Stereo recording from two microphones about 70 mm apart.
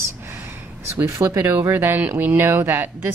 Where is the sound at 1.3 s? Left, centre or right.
Right.